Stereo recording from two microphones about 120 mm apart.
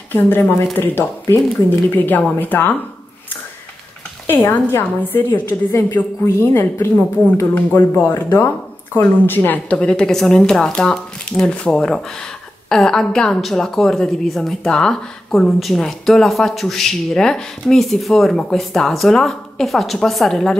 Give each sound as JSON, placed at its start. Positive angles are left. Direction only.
{"t": 0.1, "sound": "speech", "side_deg": 15}
{"t": 4.3, "sound": "a woman's voice", "side_deg": 15}